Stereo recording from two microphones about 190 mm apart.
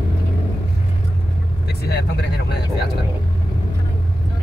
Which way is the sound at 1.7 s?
60° left (ahead or behind).